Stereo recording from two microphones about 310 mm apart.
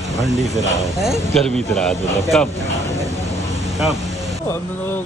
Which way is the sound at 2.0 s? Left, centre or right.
Right.